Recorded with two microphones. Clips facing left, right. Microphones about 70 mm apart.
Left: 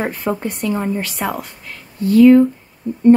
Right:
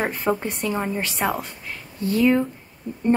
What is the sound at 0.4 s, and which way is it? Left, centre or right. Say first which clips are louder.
Speech: left 5 dB; right.